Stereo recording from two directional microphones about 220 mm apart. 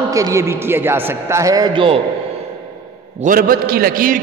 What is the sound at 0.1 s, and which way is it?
A man's voice, 15° right (ahead or behind).